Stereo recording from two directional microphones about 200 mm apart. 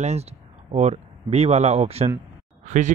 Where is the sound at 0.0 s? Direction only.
30° right (ahead or behind).